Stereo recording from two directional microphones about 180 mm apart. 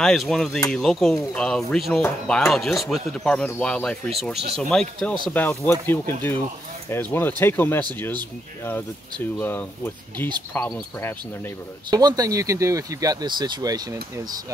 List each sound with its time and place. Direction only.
0.0 s speech: centre (ahead or behind)
11.9 s speech: 20° right (ahead or behind)